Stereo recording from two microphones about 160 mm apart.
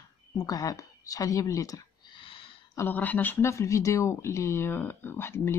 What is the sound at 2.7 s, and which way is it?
Speech, 15° left (ahead or behind).